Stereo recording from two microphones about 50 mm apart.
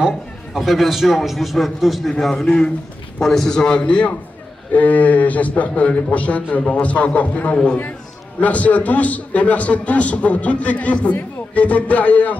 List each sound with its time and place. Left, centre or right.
0.6 s a man's voice: centre; by 4.1 s left
4.7 s a man's voice: left